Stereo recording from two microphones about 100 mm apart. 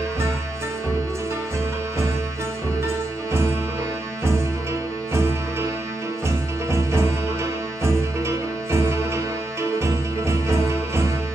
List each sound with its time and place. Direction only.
6.2 s music: 25° right (ahead or behind)